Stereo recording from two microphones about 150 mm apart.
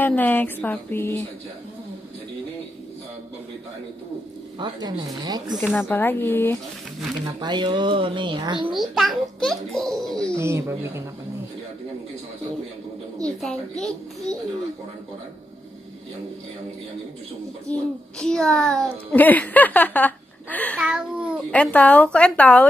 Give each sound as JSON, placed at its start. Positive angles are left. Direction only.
{"t": 0.0, "sound": "speech", "side_deg": 10}
{"t": 4.6, "sound": "speech", "side_deg": -25}
{"t": 5.8, "sound": "speech", "side_deg": 15}
{"t": 7.2, "sound": "speech", "side_deg": -30}
{"t": 8.7, "sound": "a child's voice", "side_deg": 0}
{"t": 10.3, "sound": "speech", "side_deg": -20}
{"t": 13.2, "sound": "a child's voice", "side_deg": 5}
{"t": 17.7, "sound": "speech", "side_deg": 10}
{"t": 20.8, "sound": "a child's voice", "side_deg": -5}
{"t": 21.5, "sound": "speech", "side_deg": 10}